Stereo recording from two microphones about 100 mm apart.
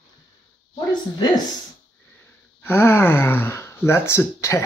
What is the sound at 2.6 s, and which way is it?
Speech, 20° left (ahead or behind).